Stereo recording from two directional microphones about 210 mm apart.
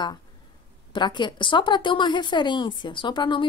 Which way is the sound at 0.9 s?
20° left (ahead or behind).